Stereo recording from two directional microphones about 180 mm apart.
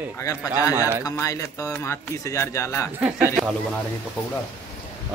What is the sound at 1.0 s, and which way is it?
Speech, 15° left (ahead or behind).